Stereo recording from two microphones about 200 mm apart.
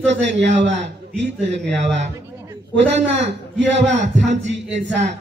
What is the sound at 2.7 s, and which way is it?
A man's voice, 60° right (ahead or behind).